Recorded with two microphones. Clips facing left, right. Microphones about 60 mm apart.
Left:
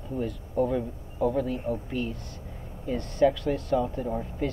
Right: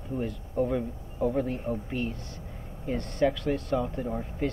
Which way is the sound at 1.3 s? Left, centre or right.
Right.